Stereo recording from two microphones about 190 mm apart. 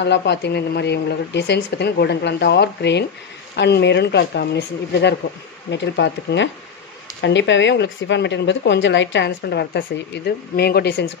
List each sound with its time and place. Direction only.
0.0 s speech: 65° left (ahead or behind)